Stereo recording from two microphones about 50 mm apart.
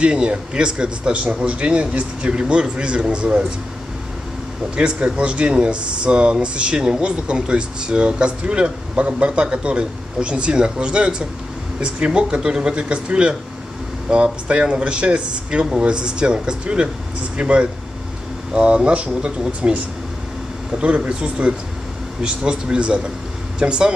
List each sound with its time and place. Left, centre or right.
0.0 s speech: right
4.7 s speech: right